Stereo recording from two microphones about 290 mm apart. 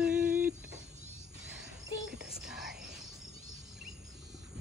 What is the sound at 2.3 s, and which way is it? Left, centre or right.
Whispering, centre.